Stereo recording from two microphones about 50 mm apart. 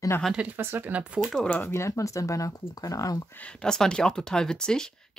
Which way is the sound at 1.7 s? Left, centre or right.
Left.